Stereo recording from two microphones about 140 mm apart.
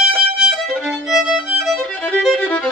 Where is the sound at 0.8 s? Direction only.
Centre (ahead or behind).